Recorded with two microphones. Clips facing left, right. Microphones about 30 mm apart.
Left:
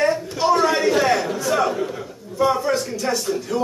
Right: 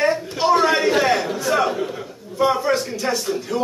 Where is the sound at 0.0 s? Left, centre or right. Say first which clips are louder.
Even; centre.